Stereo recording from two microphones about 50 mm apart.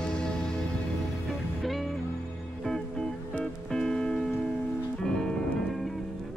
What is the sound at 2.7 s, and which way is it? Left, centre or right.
Music, centre.